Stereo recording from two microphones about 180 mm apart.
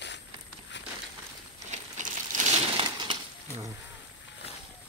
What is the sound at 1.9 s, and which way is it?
Crumpling, 45° right (ahead or behind).